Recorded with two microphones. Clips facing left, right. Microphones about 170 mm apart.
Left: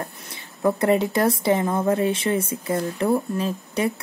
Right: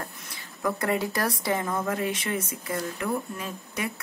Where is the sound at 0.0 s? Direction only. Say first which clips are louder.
Left 5 dB; 25° left (ahead or behind).